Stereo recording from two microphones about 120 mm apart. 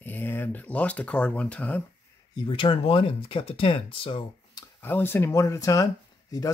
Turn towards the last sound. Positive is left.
turn(degrees=30)  # may be behind; listen again after turning